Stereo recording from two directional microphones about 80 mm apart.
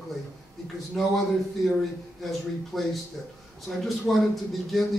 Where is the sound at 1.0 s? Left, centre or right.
Centre.